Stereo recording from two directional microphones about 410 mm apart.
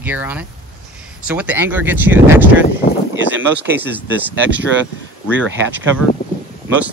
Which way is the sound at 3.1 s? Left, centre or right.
Centre.